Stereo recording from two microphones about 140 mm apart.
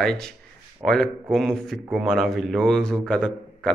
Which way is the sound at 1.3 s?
5° left (ahead or behind).